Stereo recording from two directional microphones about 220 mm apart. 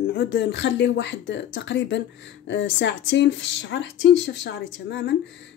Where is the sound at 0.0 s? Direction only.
50° left (ahead or behind).